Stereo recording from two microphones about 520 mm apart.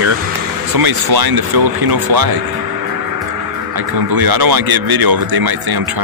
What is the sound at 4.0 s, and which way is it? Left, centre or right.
Speech, right.